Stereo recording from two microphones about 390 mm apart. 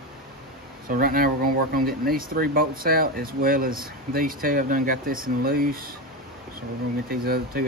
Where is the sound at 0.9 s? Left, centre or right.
Right.